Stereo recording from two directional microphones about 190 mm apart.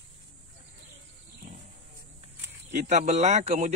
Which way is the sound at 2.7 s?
40° right (ahead or behind).